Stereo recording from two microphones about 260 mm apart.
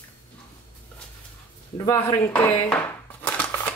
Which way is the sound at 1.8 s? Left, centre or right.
Centre.